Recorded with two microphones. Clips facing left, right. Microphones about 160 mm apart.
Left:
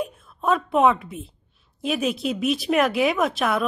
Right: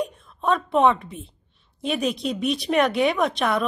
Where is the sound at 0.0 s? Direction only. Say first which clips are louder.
Even; 5° left (ahead or behind).